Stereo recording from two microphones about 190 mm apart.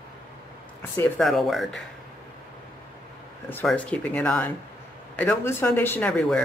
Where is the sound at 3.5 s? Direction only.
10° left (ahead or behind).